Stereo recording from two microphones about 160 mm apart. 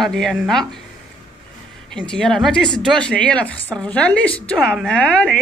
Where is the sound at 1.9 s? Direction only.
5° left (ahead or behind).